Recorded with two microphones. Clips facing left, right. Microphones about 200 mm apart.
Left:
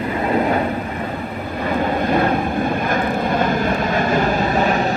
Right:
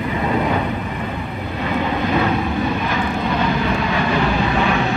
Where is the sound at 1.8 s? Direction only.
50° left (ahead or behind).